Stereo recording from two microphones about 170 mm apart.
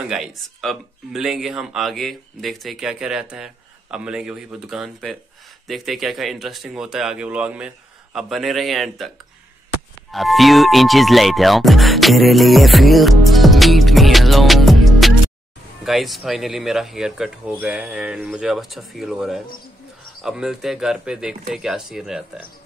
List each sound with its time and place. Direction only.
0.1 s speech: centre (ahead or behind)
10.1 s music: centre (ahead or behind)
15.8 s speech: centre (ahead or behind)